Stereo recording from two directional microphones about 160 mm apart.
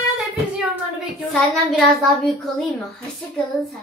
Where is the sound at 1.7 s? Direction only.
Centre (ahead or behind).